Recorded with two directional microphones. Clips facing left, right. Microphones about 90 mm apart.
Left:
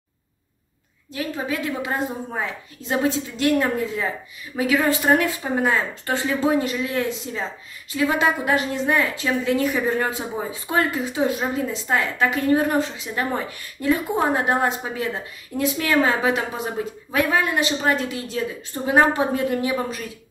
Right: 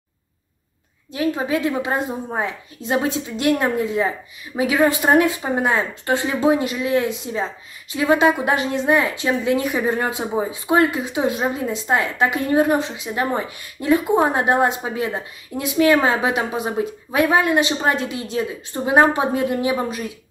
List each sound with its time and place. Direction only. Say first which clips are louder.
1.1 s a woman's voice: right 6 dB; 20° right (ahead or behind)